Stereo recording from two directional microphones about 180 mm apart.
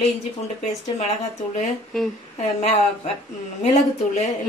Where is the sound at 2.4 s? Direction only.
35° left (ahead or behind).